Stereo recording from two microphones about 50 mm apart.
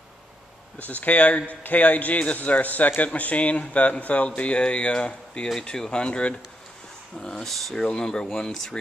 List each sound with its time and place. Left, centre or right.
0.7 s a man's voice: left; by 7.5 s centre
7.5 s speech: centre
7.8 s speech: centre